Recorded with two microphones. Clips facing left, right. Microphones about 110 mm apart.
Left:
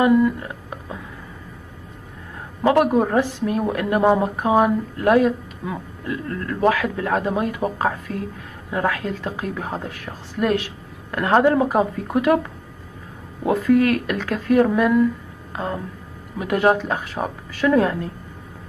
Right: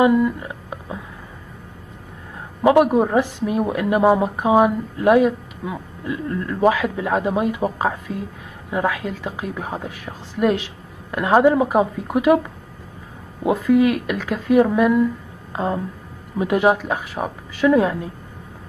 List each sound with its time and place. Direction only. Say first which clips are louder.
0.0 s a sound: even; 15° right (ahead or behind)
2.6 s a woman's voice: right 2 dB; 15° right (ahead or behind)
13.4 s a woman's voice: right 1 dB; 15° right (ahead or behind)
16.6 s a woman's voice: left 3 dB; 5° right (ahead or behind)